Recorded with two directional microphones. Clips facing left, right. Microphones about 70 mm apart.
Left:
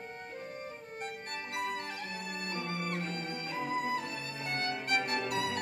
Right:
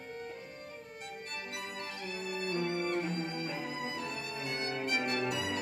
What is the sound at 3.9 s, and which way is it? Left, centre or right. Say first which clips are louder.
Music: left 2 dB; left.